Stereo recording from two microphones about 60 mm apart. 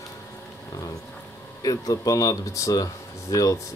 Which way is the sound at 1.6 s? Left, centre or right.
Left.